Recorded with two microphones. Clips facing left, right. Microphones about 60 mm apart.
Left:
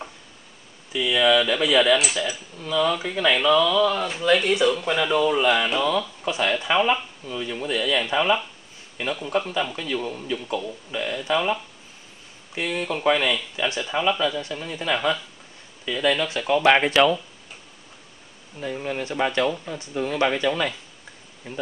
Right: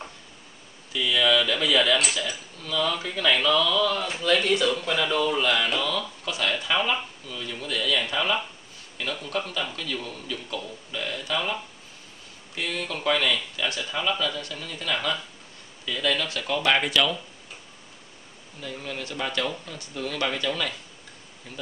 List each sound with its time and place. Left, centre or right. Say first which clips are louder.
0.9 s speech: left 3 dB; centre
12.5 s speech: left 4 dB; centre
18.6 s speech: left 6 dB; left